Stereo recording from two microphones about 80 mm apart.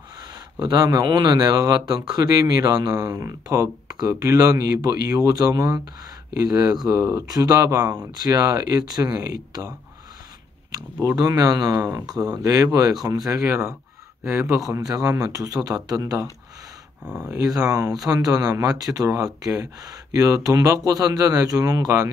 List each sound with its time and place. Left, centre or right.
0.6 s speech: right
1.0 s speech: right
11.0 s speech: right
17.0 s speech: centre
17.3 s speech: right